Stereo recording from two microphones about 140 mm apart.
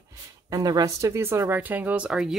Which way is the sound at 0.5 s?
25° right (ahead or behind).